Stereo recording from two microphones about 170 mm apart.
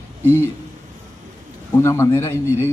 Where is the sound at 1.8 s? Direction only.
15° left (ahead or behind).